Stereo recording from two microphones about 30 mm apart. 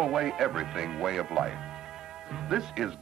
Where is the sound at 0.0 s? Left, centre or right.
Centre.